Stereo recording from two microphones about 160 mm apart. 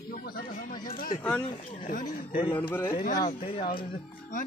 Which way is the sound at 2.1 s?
65° left (ahead or behind).